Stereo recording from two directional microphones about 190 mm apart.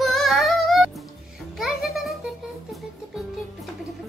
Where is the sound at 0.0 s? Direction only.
Centre (ahead or behind).